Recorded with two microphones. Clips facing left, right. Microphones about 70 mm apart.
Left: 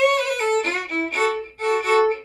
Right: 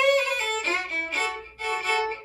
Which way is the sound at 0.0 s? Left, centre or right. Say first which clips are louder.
Left 3 dB; left.